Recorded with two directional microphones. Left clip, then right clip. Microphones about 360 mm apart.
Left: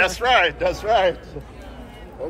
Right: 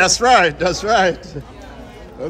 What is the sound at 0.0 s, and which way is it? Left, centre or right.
Speech, centre.